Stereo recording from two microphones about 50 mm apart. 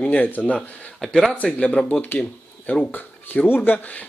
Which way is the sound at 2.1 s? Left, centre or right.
Left.